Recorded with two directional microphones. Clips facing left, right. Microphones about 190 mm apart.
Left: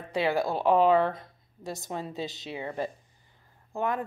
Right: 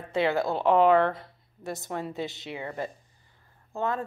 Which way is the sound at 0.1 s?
15° left (ahead or behind).